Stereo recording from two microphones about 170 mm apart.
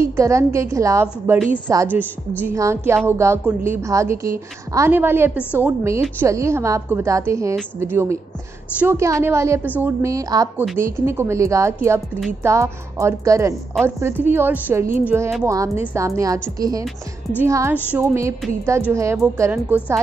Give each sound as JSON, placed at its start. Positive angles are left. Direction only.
{"t": 0.0, "sound": "a woman's voice", "side_deg": -15}